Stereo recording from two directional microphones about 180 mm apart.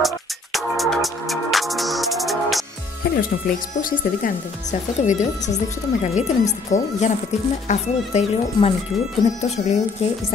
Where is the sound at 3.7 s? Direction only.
50° left (ahead or behind).